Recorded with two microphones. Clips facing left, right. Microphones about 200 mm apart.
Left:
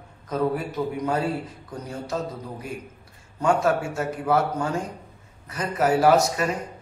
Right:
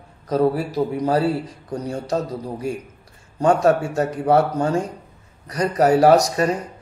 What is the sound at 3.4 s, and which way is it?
A man's voice, 35° right (ahead or behind).